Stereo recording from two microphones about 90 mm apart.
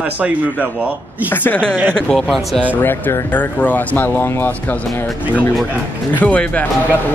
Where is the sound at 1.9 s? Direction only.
10° left (ahead or behind).